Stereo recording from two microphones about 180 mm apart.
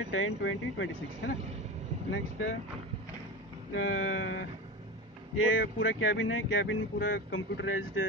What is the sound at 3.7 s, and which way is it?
Speech, 90° left.